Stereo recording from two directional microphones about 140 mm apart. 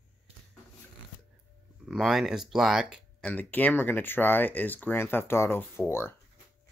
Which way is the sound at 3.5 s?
15° left (ahead or behind).